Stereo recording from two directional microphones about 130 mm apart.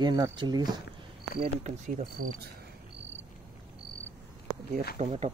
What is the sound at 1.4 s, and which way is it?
Speech, 60° right (ahead or behind).